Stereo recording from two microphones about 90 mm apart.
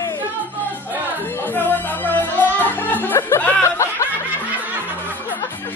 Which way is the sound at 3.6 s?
30° left (ahead or behind).